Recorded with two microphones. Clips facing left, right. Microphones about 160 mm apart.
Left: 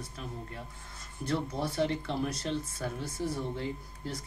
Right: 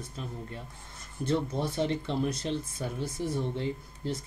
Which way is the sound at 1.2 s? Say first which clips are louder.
Right 3 dB; 20° right (ahead or behind).